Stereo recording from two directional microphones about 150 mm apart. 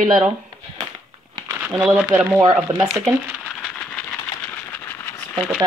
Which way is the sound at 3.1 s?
5° right (ahead or behind).